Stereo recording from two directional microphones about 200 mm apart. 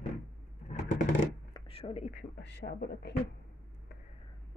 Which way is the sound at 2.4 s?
55° left (ahead or behind).